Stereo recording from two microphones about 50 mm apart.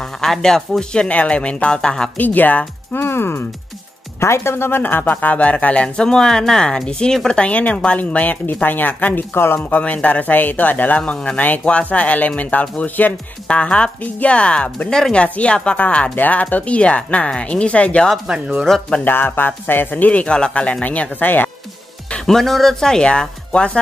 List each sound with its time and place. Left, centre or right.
0.0 s speech: centre
0.9 s speech: left
2.1 s speech: left
2.9 s speech: left
9.7 s speech: left
13.5 s speech: left
14.9 s speech: centre
15.1 s speech: left
16.2 s speech: left
18.2 s speech: centre
19.0 s speech: left
20.8 s speech: left
22.2 s speech: centre